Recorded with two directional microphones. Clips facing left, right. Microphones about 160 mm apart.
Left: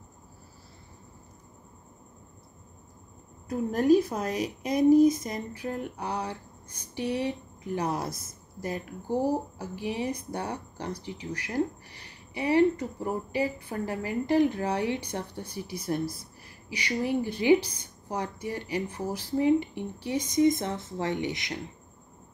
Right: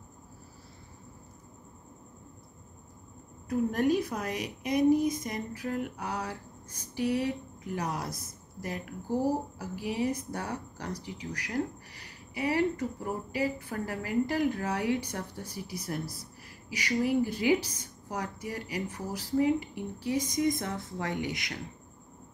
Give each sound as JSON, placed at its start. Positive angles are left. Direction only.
{"t": 3.4, "sound": "speech", "side_deg": 30}